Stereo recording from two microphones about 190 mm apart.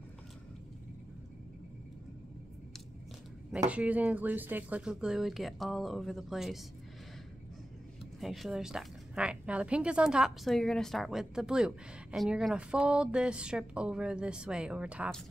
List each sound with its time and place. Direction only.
3.5 s a woman's voice: 5° right (ahead or behind)
8.2 s a woman's voice: centre (ahead or behind)